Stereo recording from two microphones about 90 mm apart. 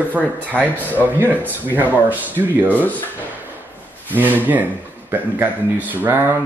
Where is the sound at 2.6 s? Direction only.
20° left (ahead or behind).